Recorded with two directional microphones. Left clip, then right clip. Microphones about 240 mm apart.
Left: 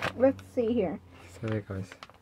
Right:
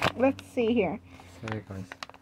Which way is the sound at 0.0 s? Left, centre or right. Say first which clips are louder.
Even; right.